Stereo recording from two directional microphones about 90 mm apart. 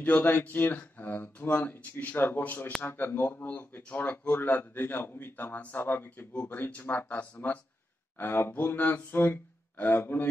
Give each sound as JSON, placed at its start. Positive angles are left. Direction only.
{"t": 0.0, "sound": "speech", "side_deg": 20}